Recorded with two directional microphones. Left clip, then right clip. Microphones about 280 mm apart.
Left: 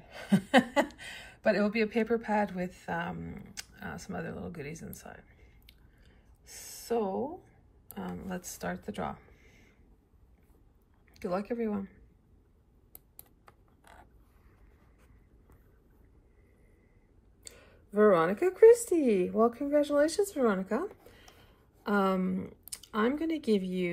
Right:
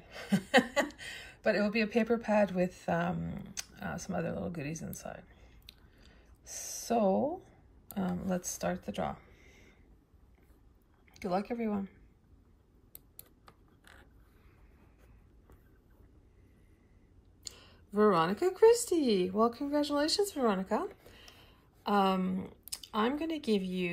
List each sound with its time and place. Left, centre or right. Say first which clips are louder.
0.0 s a sound: left 3 dB; centre
8.0 s speech: right 4 dB; centre
11.1 s speech: left 1 dB; centre
17.4 s speech: right 4 dB; centre